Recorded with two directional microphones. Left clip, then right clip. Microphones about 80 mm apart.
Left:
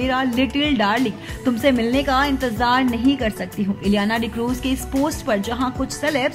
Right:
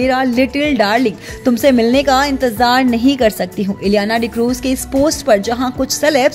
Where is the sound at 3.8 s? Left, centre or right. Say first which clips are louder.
Right 7 dB; right.